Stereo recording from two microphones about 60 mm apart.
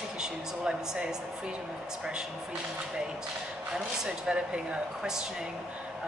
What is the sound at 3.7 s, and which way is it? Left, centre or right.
Speech, centre.